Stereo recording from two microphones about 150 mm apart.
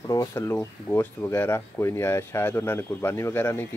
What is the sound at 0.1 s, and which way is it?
Speech, 20° left (ahead or behind).